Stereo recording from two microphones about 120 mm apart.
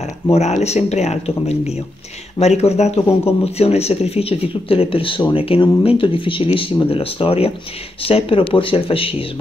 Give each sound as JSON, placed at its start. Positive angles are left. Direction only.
{"t": 0.3, "sound": "speech", "side_deg": 65}